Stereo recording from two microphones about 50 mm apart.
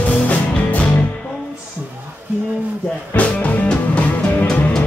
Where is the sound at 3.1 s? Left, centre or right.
Left.